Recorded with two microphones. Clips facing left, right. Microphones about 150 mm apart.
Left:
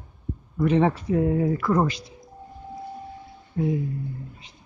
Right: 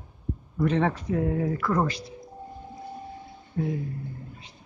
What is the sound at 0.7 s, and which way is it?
Speech, 10° left (ahead or behind).